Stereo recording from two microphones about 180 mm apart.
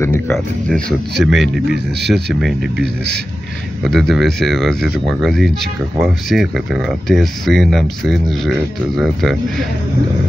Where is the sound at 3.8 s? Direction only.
Centre (ahead or behind).